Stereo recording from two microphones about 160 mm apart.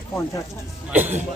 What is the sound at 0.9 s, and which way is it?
Speech, 10° right (ahead or behind).